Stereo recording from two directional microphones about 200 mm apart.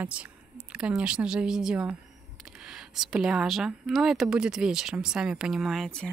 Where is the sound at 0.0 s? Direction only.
5° right (ahead or behind).